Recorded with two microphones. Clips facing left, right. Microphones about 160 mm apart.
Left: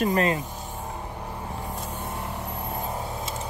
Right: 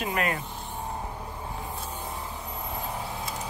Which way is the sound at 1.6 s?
70° left (ahead or behind).